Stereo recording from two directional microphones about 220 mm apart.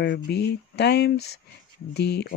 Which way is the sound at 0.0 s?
50° left (ahead or behind).